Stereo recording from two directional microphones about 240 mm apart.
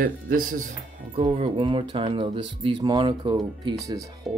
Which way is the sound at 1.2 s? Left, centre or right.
Right.